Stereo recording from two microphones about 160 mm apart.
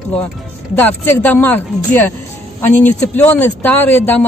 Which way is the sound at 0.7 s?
10° left (ahead or behind).